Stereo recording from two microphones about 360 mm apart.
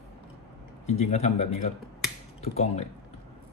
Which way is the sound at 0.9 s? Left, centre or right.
Centre.